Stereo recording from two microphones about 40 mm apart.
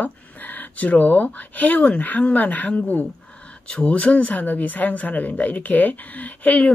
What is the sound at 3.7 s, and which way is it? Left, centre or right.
Speech, left.